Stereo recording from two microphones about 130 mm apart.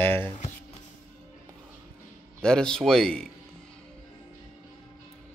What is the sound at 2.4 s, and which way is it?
Speech, 5° left (ahead or behind).